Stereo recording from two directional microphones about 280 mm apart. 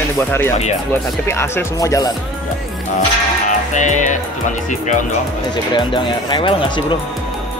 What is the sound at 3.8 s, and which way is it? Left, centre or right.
Speech, left.